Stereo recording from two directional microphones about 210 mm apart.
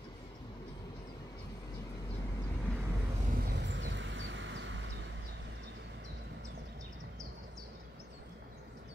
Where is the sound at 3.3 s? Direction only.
45° right (ahead or behind).